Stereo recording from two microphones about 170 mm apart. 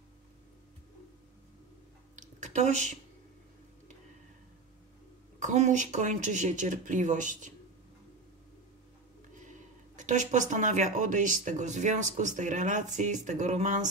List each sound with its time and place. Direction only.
2.1 s a sound: 45° right (ahead or behind)
5.4 s speech: 45° right (ahead or behind)
9.9 s speech: 45° right (ahead or behind)